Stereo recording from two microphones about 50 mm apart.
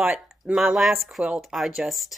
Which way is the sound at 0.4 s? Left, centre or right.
Centre.